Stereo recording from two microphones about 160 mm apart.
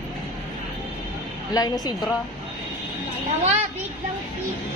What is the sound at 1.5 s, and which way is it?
Speech, 25° left (ahead or behind).